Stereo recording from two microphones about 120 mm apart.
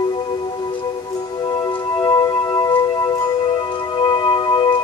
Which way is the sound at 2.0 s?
30° left (ahead or behind).